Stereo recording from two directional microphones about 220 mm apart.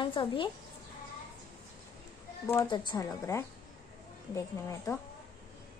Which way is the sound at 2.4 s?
15° left (ahead or behind).